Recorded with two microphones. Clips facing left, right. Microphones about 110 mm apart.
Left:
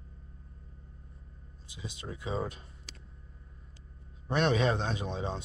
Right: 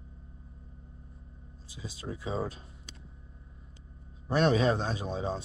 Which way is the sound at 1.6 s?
35° right (ahead or behind).